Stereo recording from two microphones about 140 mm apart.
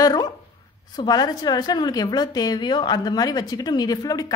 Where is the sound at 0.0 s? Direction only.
30° left (ahead or behind).